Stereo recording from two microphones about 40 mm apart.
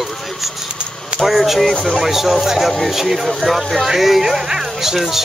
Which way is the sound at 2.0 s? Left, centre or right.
Centre.